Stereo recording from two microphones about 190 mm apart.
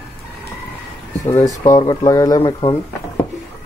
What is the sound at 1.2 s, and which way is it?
Speech, 15° left (ahead or behind).